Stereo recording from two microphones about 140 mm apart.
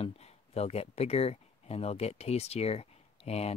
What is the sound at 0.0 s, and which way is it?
Speech, 45° left (ahead or behind).